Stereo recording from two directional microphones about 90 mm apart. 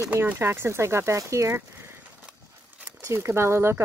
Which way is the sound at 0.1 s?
25° right (ahead or behind).